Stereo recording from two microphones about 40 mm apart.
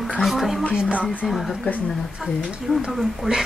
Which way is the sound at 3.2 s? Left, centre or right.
Centre.